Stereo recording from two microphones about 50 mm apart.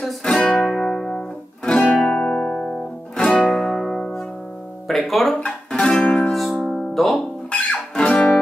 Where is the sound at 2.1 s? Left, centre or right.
Left.